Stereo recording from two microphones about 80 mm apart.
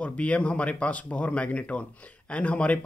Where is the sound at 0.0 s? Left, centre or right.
Centre.